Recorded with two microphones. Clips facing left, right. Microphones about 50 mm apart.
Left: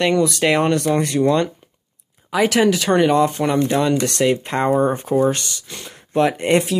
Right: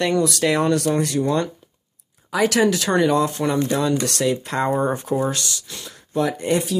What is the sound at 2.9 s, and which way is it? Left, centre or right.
Speech, left.